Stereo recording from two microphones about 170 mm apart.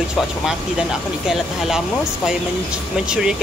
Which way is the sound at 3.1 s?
5° right (ahead or behind).